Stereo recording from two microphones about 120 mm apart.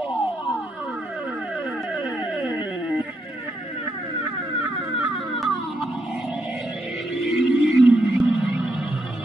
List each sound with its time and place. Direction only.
2.3 s music: 5° right (ahead or behind)
7.2 s whale vocalization: 5° right (ahead or behind)